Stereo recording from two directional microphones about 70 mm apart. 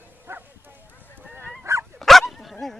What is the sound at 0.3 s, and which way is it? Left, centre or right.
Bow-wow, right.